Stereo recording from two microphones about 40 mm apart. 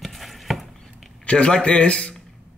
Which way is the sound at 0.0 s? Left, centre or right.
Centre.